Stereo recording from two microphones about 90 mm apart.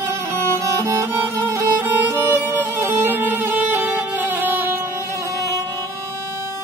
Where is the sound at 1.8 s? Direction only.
25° right (ahead or behind).